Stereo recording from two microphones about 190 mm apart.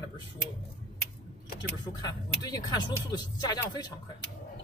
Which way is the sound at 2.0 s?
20° left (ahead or behind).